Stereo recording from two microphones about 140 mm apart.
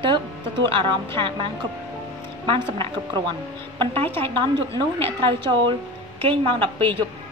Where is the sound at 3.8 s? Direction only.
40° right (ahead or behind).